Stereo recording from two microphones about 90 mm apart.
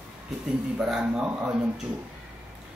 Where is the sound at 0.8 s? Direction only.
10° right (ahead or behind).